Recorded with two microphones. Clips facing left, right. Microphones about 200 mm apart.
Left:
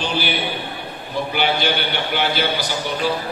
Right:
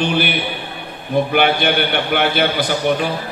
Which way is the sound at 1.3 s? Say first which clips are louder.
Right 3 dB; 55° right (ahead or behind).